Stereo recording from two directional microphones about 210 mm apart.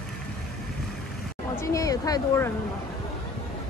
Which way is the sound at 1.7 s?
15° left (ahead or behind).